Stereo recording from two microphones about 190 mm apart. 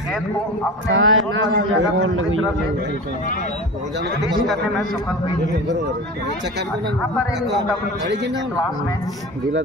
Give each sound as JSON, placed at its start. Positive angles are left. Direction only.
{"t": 0.8, "sound": "a man's voice", "side_deg": -90}